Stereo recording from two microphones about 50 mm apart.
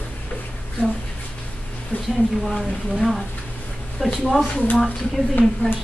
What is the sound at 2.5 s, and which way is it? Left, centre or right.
A woman's voice, centre.